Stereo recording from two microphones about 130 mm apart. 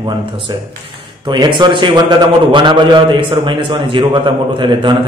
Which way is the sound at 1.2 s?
35° right (ahead or behind).